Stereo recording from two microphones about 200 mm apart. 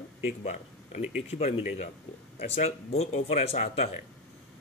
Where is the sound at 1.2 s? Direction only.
30° left (ahead or behind).